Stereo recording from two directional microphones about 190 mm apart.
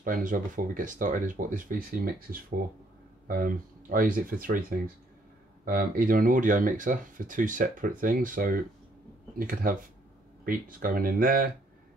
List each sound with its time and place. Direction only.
0.0 s speech: 45° right (ahead or behind)